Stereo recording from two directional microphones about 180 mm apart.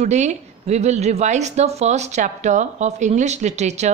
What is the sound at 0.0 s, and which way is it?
Speech, 40° right (ahead or behind).